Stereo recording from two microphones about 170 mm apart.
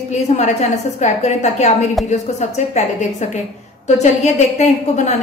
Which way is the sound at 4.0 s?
40° left (ahead or behind).